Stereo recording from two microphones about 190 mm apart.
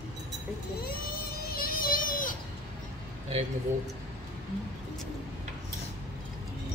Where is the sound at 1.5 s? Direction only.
50° left (ahead or behind).